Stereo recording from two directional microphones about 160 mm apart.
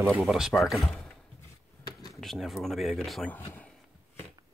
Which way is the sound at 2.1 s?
Centre (ahead or behind).